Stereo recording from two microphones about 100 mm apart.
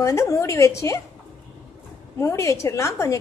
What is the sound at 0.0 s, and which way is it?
A woman's voice, 30° left (ahead or behind).